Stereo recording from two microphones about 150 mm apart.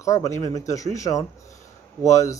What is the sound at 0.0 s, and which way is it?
Speech, 20° left (ahead or behind).